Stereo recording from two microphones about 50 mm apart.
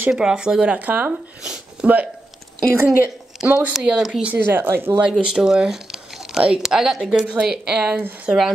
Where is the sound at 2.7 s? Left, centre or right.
Right.